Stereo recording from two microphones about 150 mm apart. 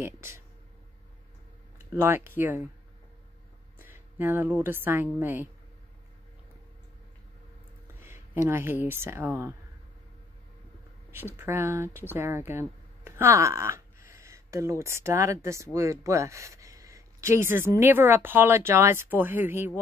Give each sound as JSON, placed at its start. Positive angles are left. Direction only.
{"t": 0.0, "sound": "speech", "side_deg": -15}
{"t": 2.0, "sound": "speech", "side_deg": -15}
{"t": 3.7, "sound": "a woman's voice", "side_deg": -15}
{"t": 8.0, "sound": "speech", "side_deg": -15}
{"t": 11.1, "sound": "speech", "side_deg": -15}